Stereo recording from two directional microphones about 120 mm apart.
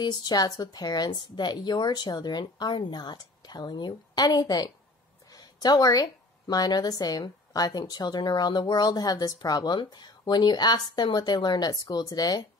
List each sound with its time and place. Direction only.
0.0 s a woman's voice: 35° left (ahead or behind)